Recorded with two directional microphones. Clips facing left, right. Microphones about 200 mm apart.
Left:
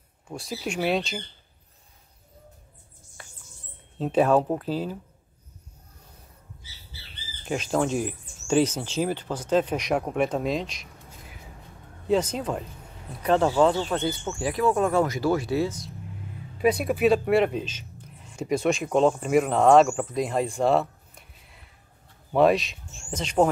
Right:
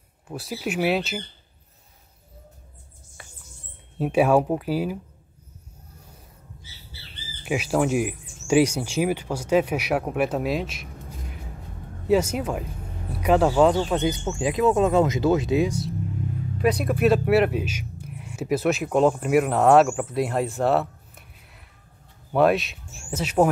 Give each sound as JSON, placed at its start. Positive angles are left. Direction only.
{"t": 0.3, "sound": "speech", "side_deg": -5}
{"t": 4.0, "sound": "speech", "side_deg": -10}
{"t": 7.4, "sound": "speech", "side_deg": -10}
{"t": 16.7, "sound": "speech", "side_deg": 5}